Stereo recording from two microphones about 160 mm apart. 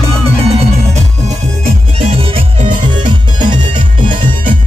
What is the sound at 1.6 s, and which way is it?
Music, 40° right (ahead or behind).